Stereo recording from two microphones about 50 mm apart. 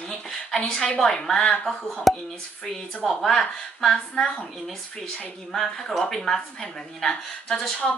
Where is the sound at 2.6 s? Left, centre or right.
Centre.